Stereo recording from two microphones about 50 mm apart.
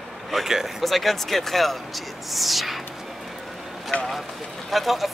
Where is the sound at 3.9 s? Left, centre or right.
Left.